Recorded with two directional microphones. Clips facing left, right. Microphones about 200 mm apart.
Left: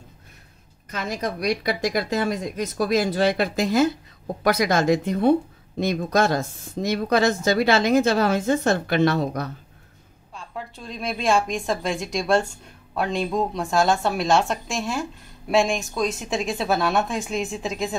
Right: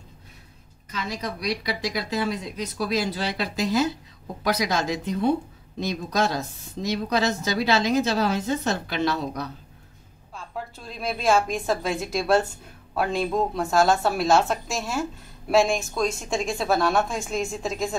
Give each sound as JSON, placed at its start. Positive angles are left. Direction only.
{"t": 0.9, "sound": "speech", "side_deg": 50}
{"t": 10.3, "sound": "a woman's voice", "side_deg": 0}